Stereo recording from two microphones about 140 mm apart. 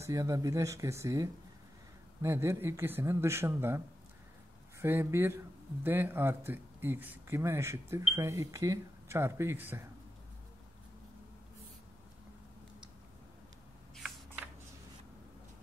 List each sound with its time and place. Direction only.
0.0 s speech: 20° right (ahead or behind)